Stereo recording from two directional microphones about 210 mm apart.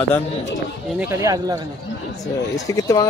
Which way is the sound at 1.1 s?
15° right (ahead or behind).